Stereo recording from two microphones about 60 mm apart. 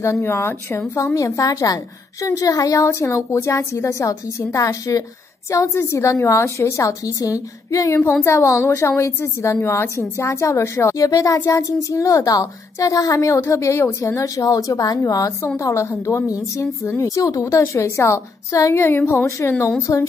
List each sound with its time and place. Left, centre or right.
0.0 s a woman's voice: left
2.9 s a woman's voice: left
5.8 s a woman's voice: left
11.0 s a woman's voice: left
11.4 s a woman's voice: left
15.4 s a woman's voice: left
16.1 s a woman's voice: left
18.8 s a woman's voice: left
19.9 s speech: left